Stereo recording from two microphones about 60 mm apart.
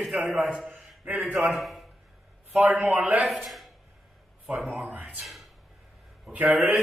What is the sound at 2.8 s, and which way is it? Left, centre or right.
Speech, right.